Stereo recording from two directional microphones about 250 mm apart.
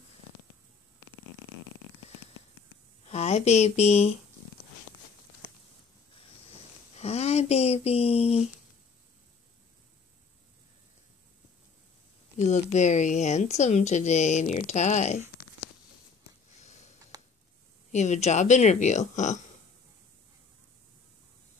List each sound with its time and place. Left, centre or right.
3.1 s speech: left
7.0 s speech: left
12.4 s speech: left
17.1 s a sound: centre
17.9 s speech: left